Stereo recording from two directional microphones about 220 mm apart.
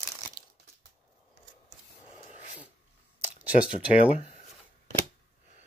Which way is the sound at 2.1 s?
35° left (ahead or behind).